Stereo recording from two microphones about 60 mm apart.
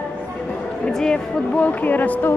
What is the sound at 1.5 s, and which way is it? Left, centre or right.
Speech, left.